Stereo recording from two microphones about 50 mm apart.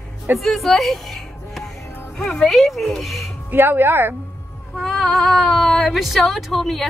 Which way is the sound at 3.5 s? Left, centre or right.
Right.